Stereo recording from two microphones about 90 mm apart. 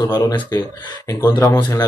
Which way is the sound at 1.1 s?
30° left (ahead or behind).